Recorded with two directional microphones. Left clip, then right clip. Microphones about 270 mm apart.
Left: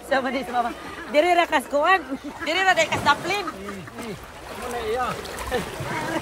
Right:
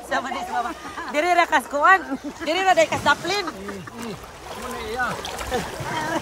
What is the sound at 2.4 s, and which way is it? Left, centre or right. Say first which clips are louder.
Speech: right 2 dB; centre.